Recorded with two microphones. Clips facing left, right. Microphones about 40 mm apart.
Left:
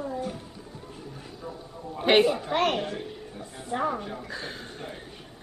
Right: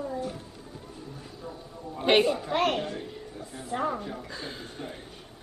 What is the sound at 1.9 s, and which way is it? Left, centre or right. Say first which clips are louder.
A woman's voice: left 2 dB; centre.